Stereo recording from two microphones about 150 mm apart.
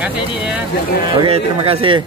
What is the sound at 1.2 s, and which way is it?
Speech, 40° right (ahead or behind).